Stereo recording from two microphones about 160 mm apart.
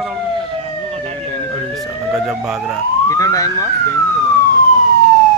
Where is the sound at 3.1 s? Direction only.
20° left (ahead or behind).